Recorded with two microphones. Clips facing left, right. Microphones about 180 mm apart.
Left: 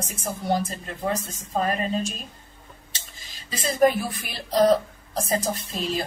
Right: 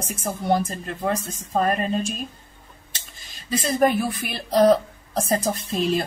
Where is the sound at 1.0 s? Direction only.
50° right (ahead or behind).